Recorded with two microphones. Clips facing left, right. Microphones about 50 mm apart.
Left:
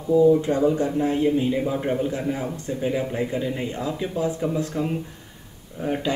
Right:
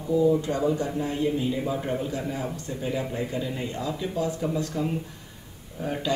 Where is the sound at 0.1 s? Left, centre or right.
Left.